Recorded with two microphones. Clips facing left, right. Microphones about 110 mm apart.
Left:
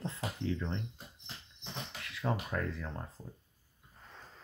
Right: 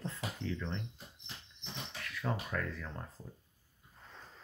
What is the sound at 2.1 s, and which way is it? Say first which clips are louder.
Speech: left 2 dB; 20° left (ahead or behind).